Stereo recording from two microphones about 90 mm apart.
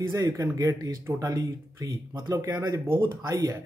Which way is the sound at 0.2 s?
40° right (ahead or behind).